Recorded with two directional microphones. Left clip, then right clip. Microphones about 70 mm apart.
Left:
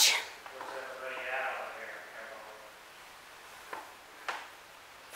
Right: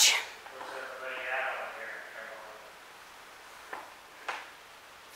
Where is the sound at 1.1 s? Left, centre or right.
Right.